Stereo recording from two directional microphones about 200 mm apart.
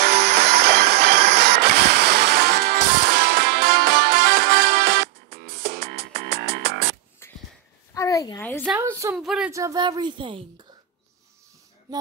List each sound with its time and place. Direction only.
0.0 s music: 55° right (ahead or behind)
7.9 s a sound: 15° left (ahead or behind)
9.1 s speech: 5° right (ahead or behind)
9.5 s a woman's voice: 15° right (ahead or behind)